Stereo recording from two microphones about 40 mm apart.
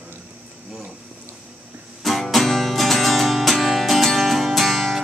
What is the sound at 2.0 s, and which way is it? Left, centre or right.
Music, centre.